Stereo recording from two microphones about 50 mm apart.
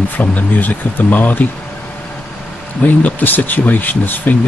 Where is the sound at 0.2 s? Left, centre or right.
Left.